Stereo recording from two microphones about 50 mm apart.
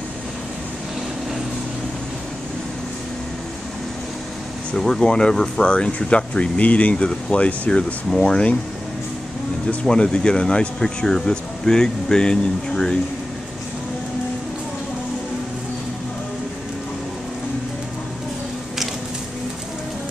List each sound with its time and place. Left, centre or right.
4.7 s speech: centre; by 7.8 s left
8.1 s speech: centre
9.8 s speech: centre